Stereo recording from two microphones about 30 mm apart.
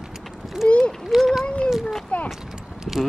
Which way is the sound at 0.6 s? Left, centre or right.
Left.